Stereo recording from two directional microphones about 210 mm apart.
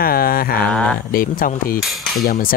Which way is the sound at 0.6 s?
5° left (ahead or behind).